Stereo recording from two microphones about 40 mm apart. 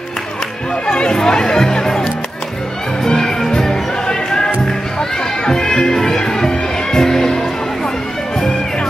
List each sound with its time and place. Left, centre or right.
0.8 s speech: centre
3.0 s music: centre